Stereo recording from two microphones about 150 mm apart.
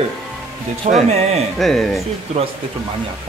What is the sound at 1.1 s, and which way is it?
Speech, 45° right (ahead or behind).